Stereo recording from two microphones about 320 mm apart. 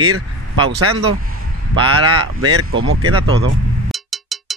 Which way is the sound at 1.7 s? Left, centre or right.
Centre.